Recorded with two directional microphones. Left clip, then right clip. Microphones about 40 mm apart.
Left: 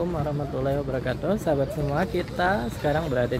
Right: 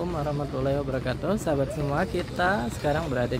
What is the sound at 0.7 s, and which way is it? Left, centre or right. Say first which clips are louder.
Speech: left 1 dB; centre.